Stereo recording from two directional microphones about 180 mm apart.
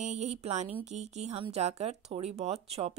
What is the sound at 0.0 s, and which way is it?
Speech, 40° right (ahead or behind).